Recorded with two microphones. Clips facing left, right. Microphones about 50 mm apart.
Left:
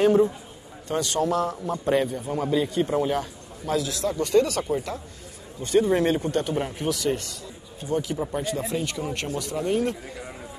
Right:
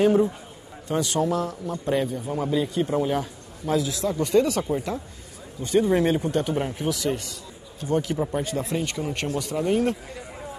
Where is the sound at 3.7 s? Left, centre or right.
Centre.